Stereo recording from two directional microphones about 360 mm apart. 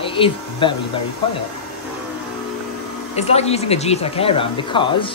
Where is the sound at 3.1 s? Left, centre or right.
Centre.